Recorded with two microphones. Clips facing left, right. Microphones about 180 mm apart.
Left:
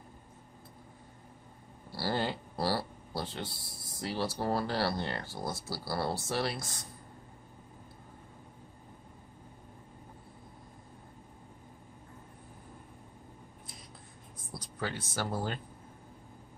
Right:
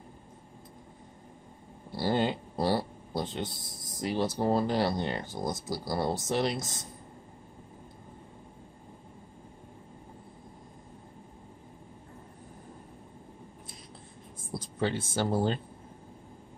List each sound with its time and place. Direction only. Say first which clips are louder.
1.9 s speech: right 5 dB; 20° right (ahead or behind)
14.5 s speech: right 7 dB; 25° right (ahead or behind)